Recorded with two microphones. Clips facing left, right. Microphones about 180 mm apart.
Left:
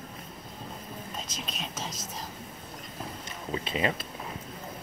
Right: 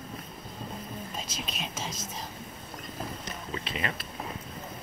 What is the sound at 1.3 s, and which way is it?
Whispering, 5° right (ahead or behind).